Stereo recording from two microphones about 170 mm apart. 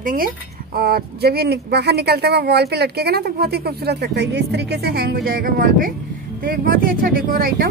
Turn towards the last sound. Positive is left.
turn(degrees=-60)  # may be behind; listen again after turning